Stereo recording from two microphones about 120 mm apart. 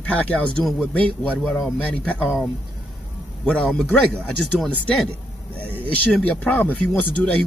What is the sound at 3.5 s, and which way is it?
Speech, 10° left (ahead or behind).